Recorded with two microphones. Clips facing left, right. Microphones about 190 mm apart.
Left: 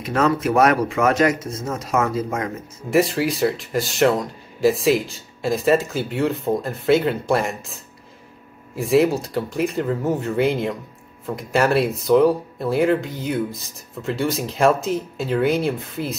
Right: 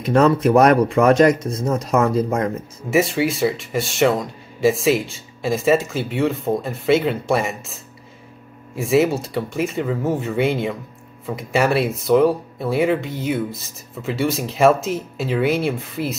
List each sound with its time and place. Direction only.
0.1 s speech: 35° right (ahead or behind)
2.9 s speech: centre (ahead or behind)